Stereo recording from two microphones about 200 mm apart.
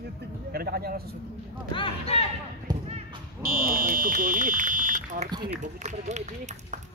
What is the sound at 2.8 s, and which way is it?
Thump, 30° right (ahead or behind).